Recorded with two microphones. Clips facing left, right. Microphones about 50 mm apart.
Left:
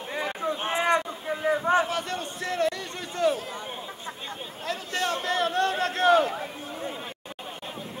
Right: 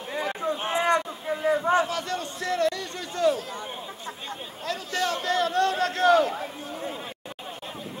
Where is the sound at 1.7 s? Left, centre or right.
Left.